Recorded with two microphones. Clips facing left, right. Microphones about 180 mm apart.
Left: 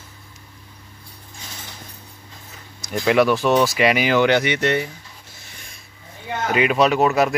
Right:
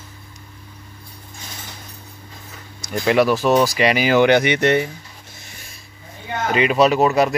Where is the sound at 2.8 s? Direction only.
Centre (ahead or behind).